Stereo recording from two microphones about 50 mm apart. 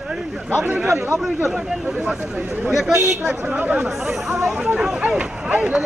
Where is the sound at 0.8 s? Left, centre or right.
Right.